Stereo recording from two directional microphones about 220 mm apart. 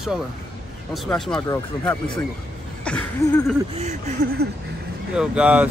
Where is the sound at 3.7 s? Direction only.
30° right (ahead or behind).